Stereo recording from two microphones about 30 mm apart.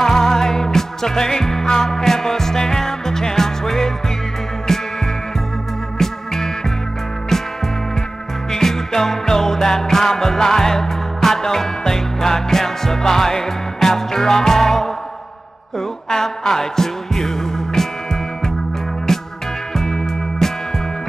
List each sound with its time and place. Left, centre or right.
0.0 s music: centre
5.9 s music: centre
8.5 s music: centre
16.1 s music: centre
19.1 s music: centre